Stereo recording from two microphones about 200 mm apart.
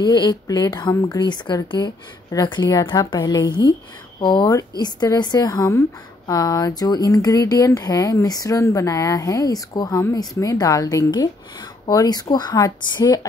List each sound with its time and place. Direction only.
0.0 s a woman's voice: 20° left (ahead or behind)